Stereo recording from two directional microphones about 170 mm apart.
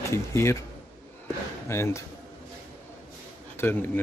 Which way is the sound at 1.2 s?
15° left (ahead or behind).